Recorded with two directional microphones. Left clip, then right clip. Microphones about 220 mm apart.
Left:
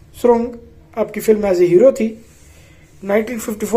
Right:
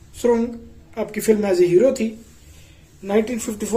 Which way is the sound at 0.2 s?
10° left (ahead or behind).